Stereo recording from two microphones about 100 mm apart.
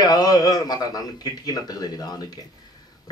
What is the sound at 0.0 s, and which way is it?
Speech, 40° left (ahead or behind).